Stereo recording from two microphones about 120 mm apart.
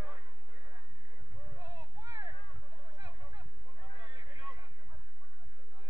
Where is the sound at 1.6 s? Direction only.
30° right (ahead or behind).